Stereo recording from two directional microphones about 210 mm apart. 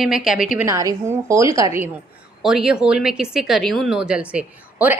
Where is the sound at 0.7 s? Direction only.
15° right (ahead or behind).